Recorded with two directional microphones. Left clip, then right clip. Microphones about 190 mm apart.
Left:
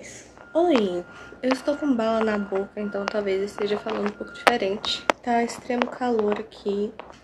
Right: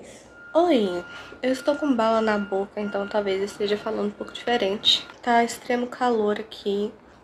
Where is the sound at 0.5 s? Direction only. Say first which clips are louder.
Right 1 dB; 5° left (ahead or behind).